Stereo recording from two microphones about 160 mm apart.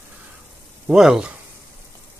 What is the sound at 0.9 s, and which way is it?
Speech, 5° right (ahead or behind).